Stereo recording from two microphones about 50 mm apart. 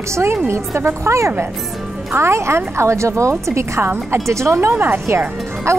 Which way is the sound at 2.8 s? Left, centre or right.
Right.